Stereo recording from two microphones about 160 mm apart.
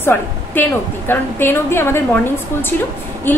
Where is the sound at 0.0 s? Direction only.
15° left (ahead or behind).